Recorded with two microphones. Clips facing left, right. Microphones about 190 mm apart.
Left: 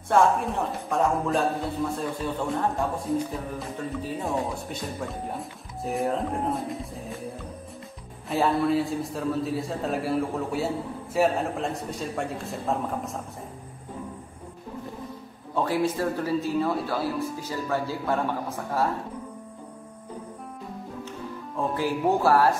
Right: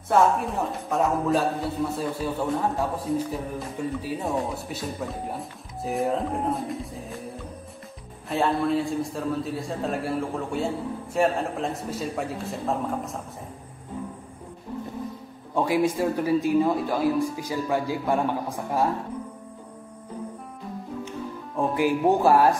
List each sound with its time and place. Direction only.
0.1 s a man's voice: centre (ahead or behind)
15.5 s speech: 10° right (ahead or behind)
21.5 s speech: 15° right (ahead or behind)